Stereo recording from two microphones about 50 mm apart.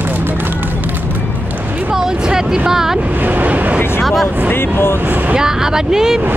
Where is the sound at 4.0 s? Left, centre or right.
Centre.